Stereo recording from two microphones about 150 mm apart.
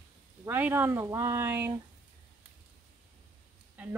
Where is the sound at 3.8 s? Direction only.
10° right (ahead or behind).